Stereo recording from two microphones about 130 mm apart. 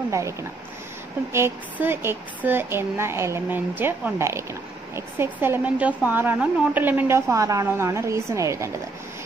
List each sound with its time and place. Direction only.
0.1 s speech: 25° right (ahead or behind)